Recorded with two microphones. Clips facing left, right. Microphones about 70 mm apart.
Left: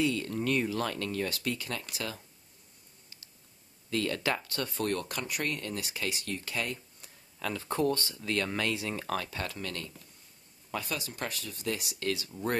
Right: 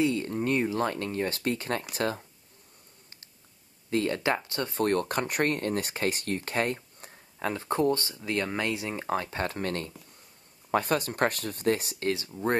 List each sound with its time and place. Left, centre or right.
0.0 s speech: right
3.9 s speech: right